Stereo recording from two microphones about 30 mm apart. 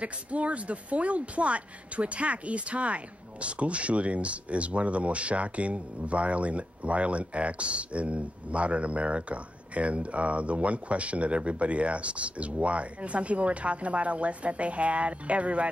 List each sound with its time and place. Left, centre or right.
0.0 s speech: right